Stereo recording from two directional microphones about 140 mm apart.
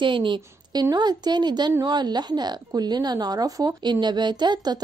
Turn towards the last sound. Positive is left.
turn(degrees=-30)  # may be behind; listen again after turning